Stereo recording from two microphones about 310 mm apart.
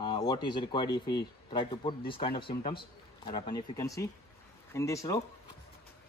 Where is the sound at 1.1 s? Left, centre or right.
Centre.